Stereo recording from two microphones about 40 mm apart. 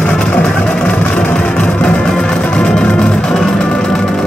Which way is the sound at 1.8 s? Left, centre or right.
Left.